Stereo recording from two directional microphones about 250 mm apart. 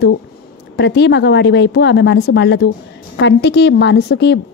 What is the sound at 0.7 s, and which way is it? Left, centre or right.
A woman's voice, left.